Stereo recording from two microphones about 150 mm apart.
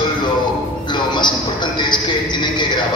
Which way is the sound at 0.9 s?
30° left (ahead or behind).